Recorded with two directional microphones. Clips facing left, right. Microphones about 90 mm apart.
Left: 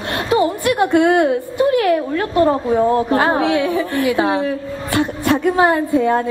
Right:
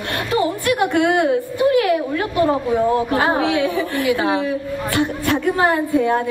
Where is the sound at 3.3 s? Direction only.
20° left (ahead or behind).